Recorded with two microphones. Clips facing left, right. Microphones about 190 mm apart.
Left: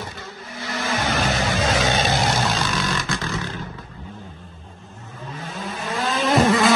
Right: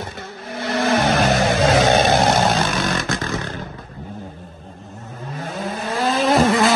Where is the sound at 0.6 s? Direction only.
65° right (ahead or behind).